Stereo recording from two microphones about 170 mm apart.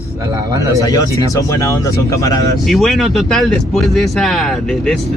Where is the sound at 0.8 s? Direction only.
20° left (ahead or behind).